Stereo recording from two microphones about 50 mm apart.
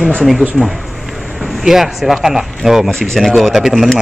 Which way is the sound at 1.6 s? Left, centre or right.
Centre.